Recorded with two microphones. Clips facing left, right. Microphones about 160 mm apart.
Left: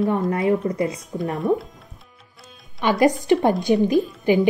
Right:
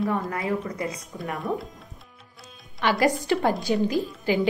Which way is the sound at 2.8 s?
20° left (ahead or behind).